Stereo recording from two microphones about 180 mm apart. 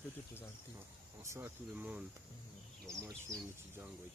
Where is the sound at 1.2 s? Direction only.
15° right (ahead or behind).